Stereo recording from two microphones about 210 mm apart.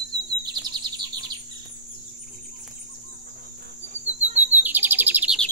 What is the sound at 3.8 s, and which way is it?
Bird, 35° right (ahead or behind).